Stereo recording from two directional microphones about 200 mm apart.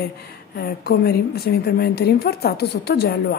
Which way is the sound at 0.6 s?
50° left (ahead or behind).